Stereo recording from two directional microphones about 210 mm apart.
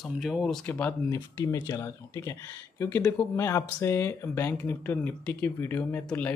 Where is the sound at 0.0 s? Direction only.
Centre (ahead or behind).